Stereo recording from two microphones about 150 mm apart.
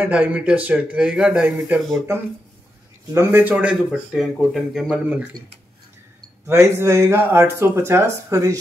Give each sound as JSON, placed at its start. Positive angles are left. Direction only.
{"t": 0.0, "sound": "speech", "side_deg": -10}
{"t": 6.4, "sound": "speech", "side_deg": -20}